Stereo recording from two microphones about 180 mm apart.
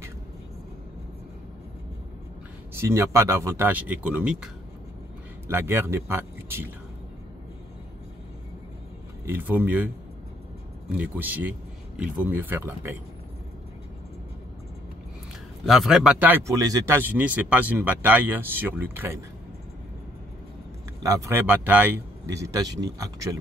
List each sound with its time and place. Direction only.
2.8 s speech: 15° right (ahead or behind)
5.5 s speech: 15° right (ahead or behind)
9.2 s speech: 10° right (ahead or behind)
10.9 s speech: 10° right (ahead or behind)
15.6 s speech: centre (ahead or behind)
21.0 s speech: 20° right (ahead or behind)